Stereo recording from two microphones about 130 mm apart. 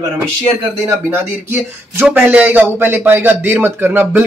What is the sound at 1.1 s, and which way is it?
Speech, 15° right (ahead or behind).